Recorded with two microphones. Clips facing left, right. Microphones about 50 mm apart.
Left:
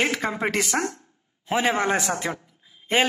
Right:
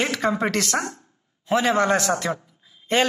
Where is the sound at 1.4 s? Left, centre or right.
Left.